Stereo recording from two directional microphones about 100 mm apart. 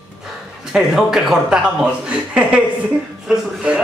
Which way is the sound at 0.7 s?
5° right (ahead or behind).